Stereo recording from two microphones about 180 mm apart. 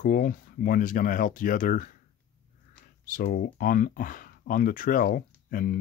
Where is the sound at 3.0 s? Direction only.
50° left (ahead or behind).